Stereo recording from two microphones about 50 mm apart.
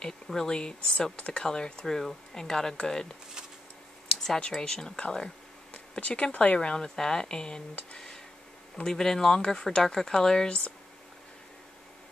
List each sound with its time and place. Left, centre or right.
0.0 s speech: centre
4.4 s speech: centre
5.7 s a sound: left
6.2 s speech: left
8.8 s speech: centre